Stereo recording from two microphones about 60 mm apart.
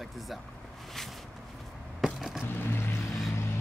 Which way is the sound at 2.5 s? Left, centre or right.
Left.